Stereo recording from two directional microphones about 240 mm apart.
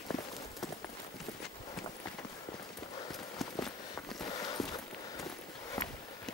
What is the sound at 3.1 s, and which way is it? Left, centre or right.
Clip-clop, centre.